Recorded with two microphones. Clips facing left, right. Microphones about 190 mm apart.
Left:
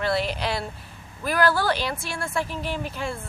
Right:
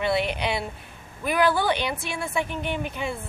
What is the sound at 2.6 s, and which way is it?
Speech, 55° right (ahead or behind).